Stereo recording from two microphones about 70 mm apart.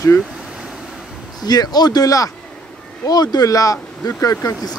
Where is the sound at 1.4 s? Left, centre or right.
Left.